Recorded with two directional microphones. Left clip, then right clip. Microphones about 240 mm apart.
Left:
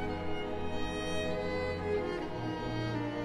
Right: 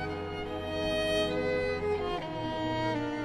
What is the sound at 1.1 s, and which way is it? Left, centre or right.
Music, right.